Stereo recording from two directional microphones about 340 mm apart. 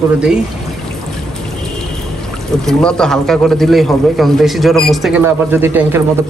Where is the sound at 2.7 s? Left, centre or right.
Centre.